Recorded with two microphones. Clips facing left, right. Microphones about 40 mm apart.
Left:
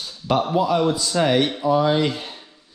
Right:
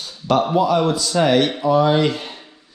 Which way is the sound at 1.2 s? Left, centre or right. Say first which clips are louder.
Right 3 dB; right.